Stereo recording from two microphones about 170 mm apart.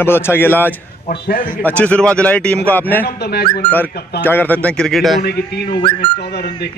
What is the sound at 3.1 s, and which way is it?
Speech, 70° left (ahead or behind).